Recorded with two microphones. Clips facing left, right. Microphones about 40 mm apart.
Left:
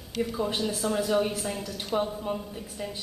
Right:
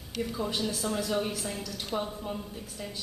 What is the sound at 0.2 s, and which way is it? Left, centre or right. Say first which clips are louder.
Speech: left 4 dB; centre.